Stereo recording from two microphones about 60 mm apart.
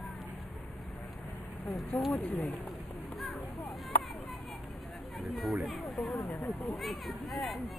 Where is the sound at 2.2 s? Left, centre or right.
Left.